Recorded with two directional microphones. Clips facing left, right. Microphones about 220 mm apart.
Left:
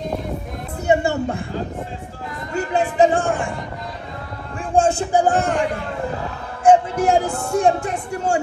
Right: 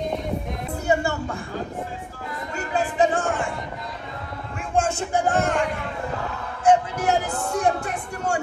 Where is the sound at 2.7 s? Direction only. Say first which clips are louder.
Left 5 dB; 30° left (ahead or behind).